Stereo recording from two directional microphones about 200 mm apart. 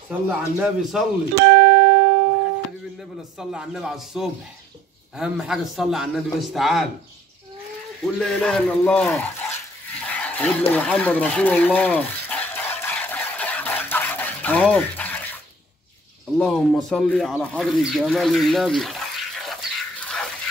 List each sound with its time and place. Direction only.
0.1 s a man's voice: 5° right (ahead or behind)
1.4 s speech: 60° right (ahead or behind)
3.3 s a man's voice: 5° right (ahead or behind)
8.0 s a man's voice: 5° left (ahead or behind)
9.9 s a sound: 5° left (ahead or behind)
16.3 s speech: 5° left (ahead or behind)